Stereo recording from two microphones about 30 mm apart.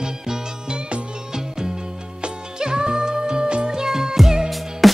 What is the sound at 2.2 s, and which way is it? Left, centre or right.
Music, right.